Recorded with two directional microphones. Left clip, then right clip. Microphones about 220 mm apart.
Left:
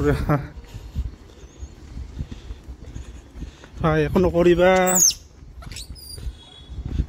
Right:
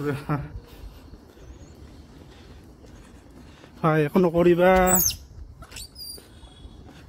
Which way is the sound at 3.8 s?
Centre (ahead or behind).